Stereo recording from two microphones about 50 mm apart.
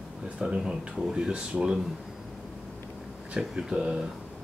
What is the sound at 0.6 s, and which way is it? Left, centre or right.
Speech, centre.